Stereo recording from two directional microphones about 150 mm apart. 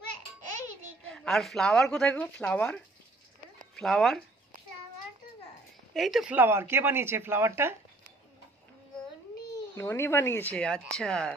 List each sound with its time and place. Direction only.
1.0 s speech: 5° left (ahead or behind)
5.9 s speech: centre (ahead or behind)
6.3 s speech: 15° right (ahead or behind)
9.8 s speech: 15° left (ahead or behind)